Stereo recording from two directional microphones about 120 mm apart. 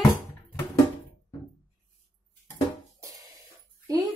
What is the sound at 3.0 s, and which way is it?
Music, 25° right (ahead or behind).